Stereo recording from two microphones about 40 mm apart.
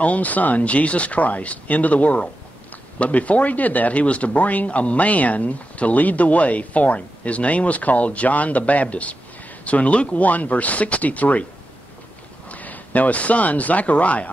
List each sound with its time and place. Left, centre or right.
0.0 s speech: left
10.2 s speech: left
12.4 s speech: left